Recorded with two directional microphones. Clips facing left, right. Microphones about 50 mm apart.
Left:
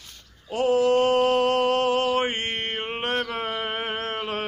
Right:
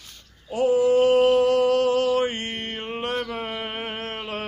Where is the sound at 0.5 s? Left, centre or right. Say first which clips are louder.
Right 1 dB; left.